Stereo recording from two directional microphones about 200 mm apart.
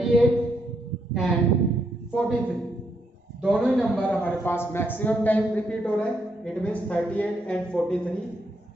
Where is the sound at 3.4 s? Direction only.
Centre (ahead or behind).